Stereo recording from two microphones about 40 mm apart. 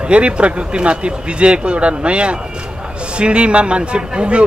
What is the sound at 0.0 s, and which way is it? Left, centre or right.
Speech, right.